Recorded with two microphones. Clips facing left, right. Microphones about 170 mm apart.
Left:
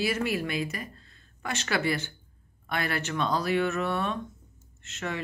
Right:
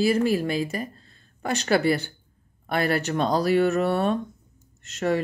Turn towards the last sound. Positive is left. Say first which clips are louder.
# right 10 dB
turn(degrees=-40)  # may be behind; listen again after turning